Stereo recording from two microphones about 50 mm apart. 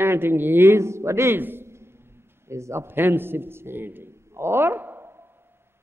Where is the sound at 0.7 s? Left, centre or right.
Right.